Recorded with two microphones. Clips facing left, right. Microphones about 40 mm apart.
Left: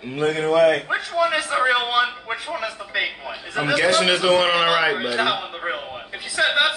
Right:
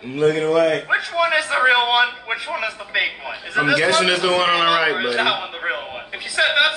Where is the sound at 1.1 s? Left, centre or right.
Right.